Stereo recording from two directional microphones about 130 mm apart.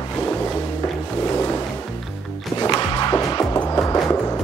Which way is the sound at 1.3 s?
20° left (ahead or behind).